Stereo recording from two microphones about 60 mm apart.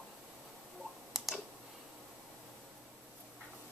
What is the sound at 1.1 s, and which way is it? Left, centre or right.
Clicking, centre.